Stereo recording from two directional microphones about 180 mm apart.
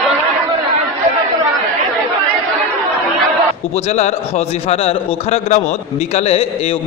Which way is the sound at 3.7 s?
35° left (ahead or behind).